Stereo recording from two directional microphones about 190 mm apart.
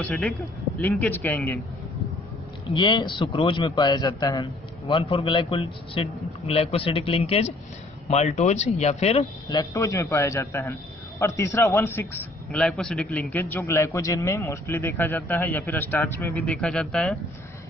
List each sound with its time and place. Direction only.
0.0 s a man's voice: centre (ahead or behind)
2.7 s a man's voice: 25° left (ahead or behind)
9.5 s a man's voice: 20° left (ahead or behind); by 17.2 s centre (ahead or behind)